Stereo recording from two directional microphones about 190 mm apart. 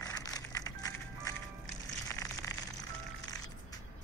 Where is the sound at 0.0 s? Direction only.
20° left (ahead or behind).